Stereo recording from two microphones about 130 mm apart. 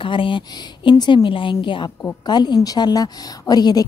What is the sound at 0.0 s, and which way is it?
A woman's voice, 40° left (ahead or behind).